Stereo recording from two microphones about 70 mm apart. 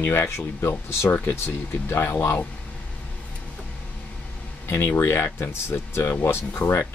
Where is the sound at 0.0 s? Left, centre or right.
Left.